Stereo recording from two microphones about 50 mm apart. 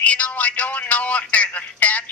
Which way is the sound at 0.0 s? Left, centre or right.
Left.